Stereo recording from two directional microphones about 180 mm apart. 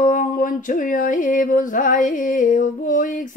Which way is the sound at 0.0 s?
50° left (ahead or behind).